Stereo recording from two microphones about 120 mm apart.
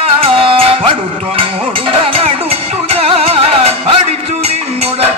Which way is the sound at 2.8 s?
55° right (ahead or behind).